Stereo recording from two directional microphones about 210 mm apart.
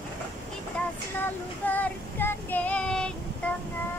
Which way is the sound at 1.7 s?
10° left (ahead or behind).